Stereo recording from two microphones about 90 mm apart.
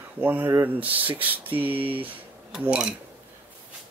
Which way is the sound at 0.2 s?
20° right (ahead or behind).